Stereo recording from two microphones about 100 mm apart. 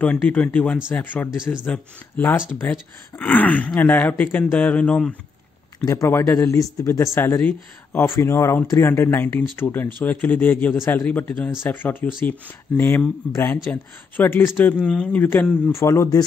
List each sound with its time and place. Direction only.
0.0 s speech: 15° left (ahead or behind)
5.8 s speech: 30° left (ahead or behind); by 8.0 s 15° left (ahead or behind)
8.0 s speech: 25° left (ahead or behind)
15.7 s speech: 30° left (ahead or behind)